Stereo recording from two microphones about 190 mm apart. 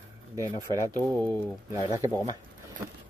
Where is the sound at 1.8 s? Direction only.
20° right (ahead or behind).